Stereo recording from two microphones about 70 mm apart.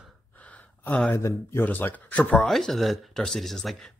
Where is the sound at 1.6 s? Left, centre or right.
Left.